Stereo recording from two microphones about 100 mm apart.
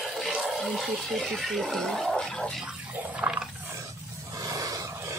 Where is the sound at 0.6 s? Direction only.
Centre (ahead or behind).